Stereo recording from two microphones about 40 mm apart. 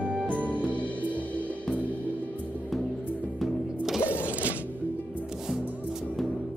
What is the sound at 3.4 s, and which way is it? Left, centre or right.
Music, centre.